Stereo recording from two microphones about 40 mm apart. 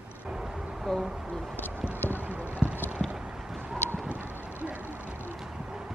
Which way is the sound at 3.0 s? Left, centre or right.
Centre.